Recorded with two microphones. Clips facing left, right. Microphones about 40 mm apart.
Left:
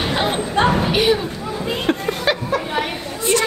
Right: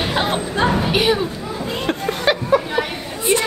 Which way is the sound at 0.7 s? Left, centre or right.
Centre.